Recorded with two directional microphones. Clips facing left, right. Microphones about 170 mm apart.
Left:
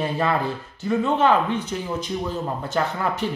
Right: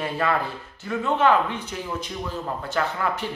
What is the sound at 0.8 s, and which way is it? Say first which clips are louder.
Speech: left 2 dB; 20° left (ahead or behind).